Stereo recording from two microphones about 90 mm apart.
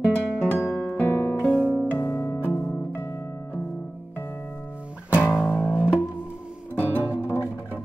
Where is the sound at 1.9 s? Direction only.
25° left (ahead or behind).